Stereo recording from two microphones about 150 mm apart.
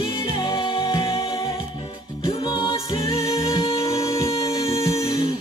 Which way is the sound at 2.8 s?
40° left (ahead or behind).